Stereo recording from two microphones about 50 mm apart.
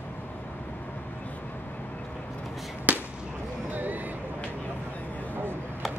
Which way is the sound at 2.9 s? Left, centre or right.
Right.